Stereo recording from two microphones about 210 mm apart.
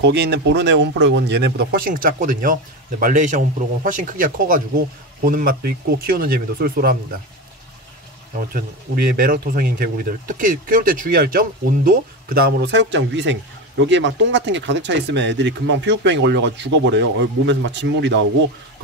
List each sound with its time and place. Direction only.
0.0 s speech: 55° right (ahead or behind)
8.5 s speech: 45° right (ahead or behind)